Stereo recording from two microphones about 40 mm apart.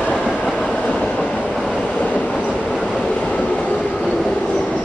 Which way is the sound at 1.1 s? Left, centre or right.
Left.